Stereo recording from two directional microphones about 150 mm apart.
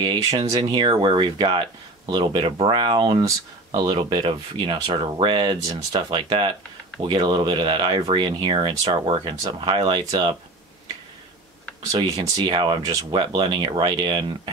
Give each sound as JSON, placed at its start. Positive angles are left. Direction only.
{"t": 0.6, "sound": "speech", "side_deg": -30}
{"t": 11.9, "sound": "speech", "side_deg": -30}